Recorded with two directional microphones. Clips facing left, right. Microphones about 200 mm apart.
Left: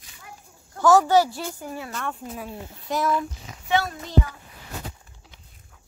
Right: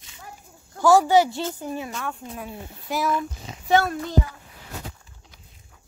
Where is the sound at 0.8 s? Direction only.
10° right (ahead or behind).